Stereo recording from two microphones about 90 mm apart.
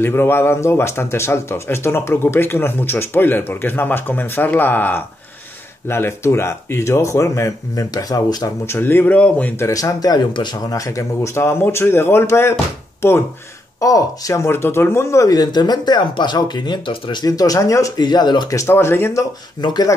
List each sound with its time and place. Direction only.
0.0 s speech: 25° left (ahead or behind)
7.9 s speech: 45° left (ahead or behind)
8.6 s speech: 25° left (ahead or behind)
9.6 s speech: 35° left (ahead or behind); by 10.6 s 55° left (ahead or behind)
10.7 s speech: 35° left (ahead or behind)
13.7 s speech: 40° left (ahead or behind)
15.3 s speech: 50° left (ahead or behind); by 17.2 s 70° left (ahead or behind)
17.2 s speech: 45° left (ahead or behind)
18.0 s speech: 55° left (ahead or behind)
18.5 s speech: 35° left (ahead or behind)
19.6 s speech: 50° left (ahead or behind)